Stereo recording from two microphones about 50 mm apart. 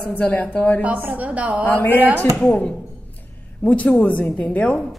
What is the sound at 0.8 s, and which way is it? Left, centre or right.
Speech, right.